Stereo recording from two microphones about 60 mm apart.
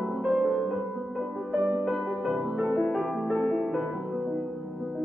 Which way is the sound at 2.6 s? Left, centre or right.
Centre.